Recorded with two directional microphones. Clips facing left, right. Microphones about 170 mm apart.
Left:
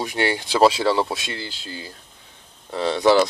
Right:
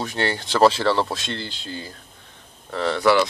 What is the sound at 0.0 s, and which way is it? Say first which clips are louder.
Speech: left 2 dB; 15° left (ahead or behind).